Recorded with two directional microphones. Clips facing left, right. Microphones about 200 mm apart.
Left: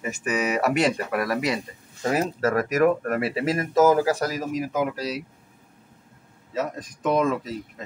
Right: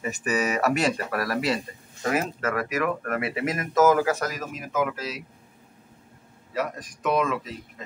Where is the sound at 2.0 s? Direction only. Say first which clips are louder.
Left 3 dB; 35° left (ahead or behind).